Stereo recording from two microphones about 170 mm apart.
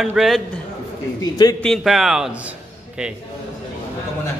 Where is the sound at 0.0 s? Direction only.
Centre (ahead or behind).